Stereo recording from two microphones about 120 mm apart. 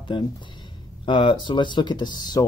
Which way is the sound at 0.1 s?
40° left (ahead or behind).